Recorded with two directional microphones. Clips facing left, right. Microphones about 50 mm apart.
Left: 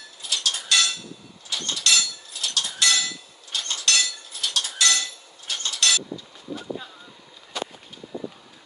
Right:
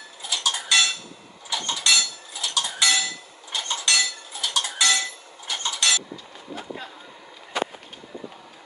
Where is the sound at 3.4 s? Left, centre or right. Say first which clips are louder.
Right 1 dB; centre.